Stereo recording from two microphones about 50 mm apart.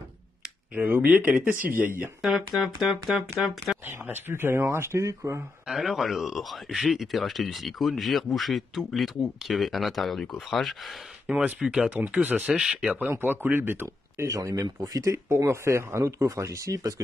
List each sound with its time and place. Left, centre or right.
0.7 s speech: right
1.0 s speech: right
1.3 s speech: right
2.2 s speech: centre
3.8 s speech: right
4.3 s speech: right
5.7 s speech: centre
11.2 s speech: right
11.6 s speech: centre
12.1 s speech: right
12.5 s speech: centre
13.2 s speech: right
14.2 s speech: right